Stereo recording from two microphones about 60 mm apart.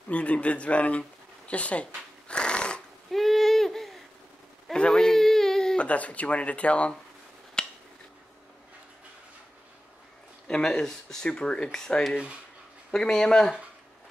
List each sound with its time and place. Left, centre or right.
0.1 s speech: left
2.2 s dog: centre
3.1 s owl: centre
4.7 s whimper: centre
5.8 s speech: left
7.6 s a sound: centre
10.5 s speech: centre